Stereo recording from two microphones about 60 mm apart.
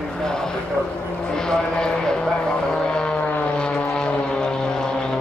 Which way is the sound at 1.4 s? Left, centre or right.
Centre.